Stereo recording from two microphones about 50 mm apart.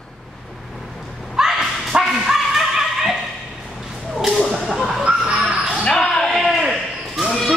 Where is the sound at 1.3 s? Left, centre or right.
Centre.